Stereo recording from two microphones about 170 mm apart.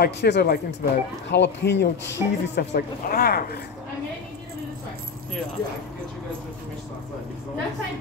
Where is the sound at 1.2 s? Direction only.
90° left.